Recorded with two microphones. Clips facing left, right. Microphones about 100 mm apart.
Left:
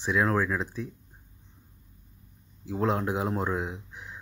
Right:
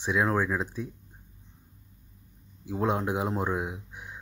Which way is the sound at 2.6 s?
20° right (ahead or behind).